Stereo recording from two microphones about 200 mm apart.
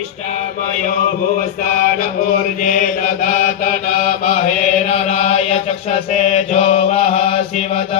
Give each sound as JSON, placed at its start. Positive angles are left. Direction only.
{"t": 2.6, "sound": "mantra", "side_deg": 40}
{"t": 4.8, "sound": "chant", "side_deg": 35}
{"t": 6.5, "sound": "mantra", "side_deg": 35}